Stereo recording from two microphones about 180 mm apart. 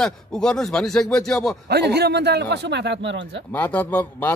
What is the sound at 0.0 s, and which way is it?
A man's voice, 5° left (ahead or behind).